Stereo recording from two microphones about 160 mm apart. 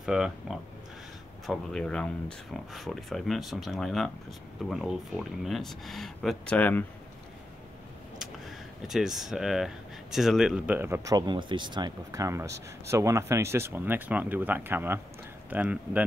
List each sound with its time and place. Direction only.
0.0 s speech: 5° right (ahead or behind)
8.2 s a sound: centre (ahead or behind)
10.1 s speech: centre (ahead or behind)